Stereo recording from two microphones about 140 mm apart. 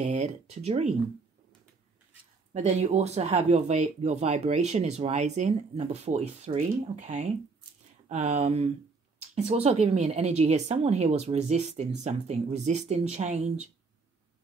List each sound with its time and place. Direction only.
0.0 s speech: 55° right (ahead or behind)
2.5 s speech: 50° right (ahead or behind)